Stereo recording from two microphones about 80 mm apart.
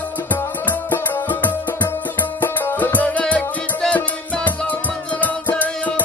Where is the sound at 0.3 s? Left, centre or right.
Left.